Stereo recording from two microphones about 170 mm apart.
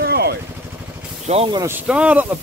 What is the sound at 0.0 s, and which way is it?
Vehicle, 70° right (ahead or behind).